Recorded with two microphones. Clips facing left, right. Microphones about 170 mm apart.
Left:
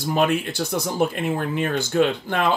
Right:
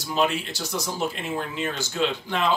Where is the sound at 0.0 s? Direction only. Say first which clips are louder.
Left 4 dB; 55° left (ahead or behind).